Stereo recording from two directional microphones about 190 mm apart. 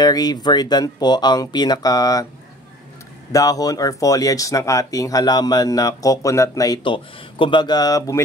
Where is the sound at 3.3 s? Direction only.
20° left (ahead or behind).